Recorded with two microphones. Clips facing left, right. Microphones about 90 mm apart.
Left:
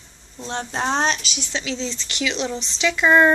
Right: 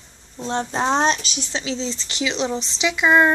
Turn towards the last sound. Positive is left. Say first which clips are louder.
# left 1 dB
turn(degrees=-5)  # may be behind; listen again after turning